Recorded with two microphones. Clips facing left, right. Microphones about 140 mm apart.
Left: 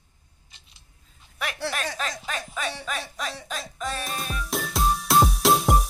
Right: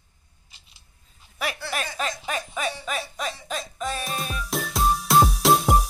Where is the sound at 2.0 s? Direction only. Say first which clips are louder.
Right 3 dB; 5° right (ahead or behind).